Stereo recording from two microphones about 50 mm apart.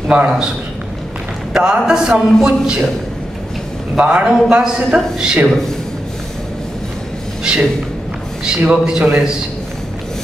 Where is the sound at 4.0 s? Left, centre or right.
Centre.